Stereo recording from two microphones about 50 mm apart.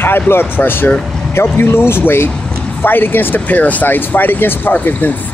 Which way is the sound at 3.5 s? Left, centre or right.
Left.